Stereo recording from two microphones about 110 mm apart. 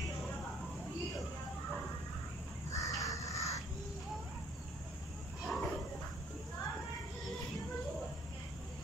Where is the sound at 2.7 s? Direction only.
30° left (ahead or behind).